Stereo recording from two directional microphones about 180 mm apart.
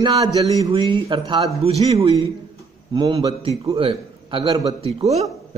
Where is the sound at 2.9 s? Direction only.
25° right (ahead or behind).